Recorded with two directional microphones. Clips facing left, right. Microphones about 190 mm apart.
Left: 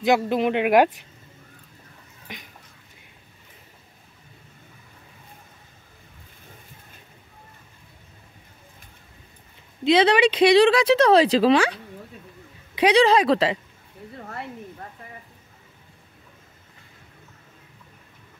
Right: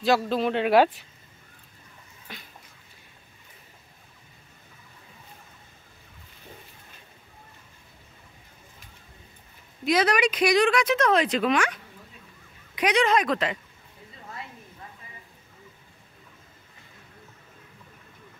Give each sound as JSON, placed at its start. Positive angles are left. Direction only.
{"t": 0.0, "sound": "speech", "side_deg": 15}
{"t": 2.3, "sound": "a sound", "side_deg": 15}
{"t": 9.8, "sound": "speech", "side_deg": 30}